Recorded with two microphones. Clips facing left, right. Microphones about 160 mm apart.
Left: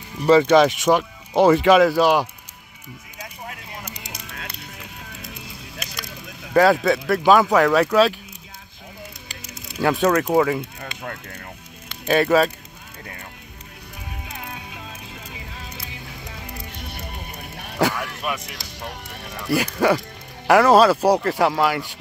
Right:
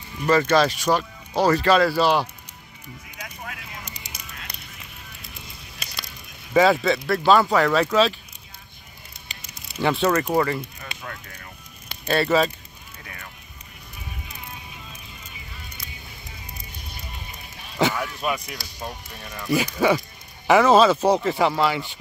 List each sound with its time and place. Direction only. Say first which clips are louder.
0.3 s speech: left 5 dB; 15° left (ahead or behind)
3.8 s a sound: left 4 dB; 15° left (ahead or behind)
6.5 s speech: left 2 dB; 5° left (ahead or behind)
9.8 s speech: left 2 dB; 5° left (ahead or behind)
10.8 s fire: left 4 dB; 50° left (ahead or behind)
12.1 s speech: left 3 dB; 10° left (ahead or behind)
14.2 s music: left 5 dB; 85° left; by 17.7 s 60° left (ahead or behind)
17.7 s a sound: left 1 dB; centre (ahead or behind)
19.4 s speech: left 1 dB; 10° left (ahead or behind)